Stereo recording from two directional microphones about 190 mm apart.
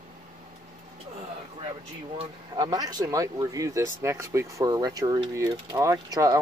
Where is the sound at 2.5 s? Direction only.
20° right (ahead or behind).